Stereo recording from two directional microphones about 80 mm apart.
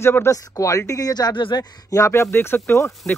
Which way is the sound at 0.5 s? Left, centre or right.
Left.